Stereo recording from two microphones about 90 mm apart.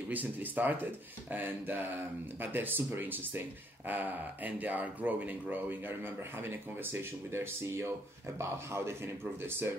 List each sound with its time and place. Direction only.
0.1 s speech: 20° right (ahead or behind)